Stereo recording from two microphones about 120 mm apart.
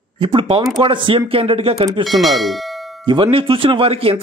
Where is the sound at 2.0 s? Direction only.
Centre (ahead or behind).